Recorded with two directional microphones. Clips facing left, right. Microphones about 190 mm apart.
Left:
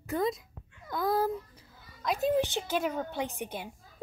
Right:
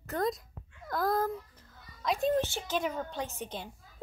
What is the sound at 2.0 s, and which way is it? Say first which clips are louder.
A child's voice: left 1 dB; 5° left (ahead or behind).